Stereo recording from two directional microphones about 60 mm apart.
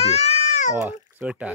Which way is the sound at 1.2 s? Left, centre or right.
Centre.